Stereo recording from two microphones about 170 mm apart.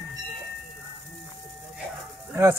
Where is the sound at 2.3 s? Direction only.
15° right (ahead or behind).